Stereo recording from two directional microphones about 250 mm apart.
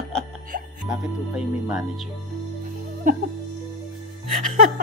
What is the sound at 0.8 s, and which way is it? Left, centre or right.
Speech, centre.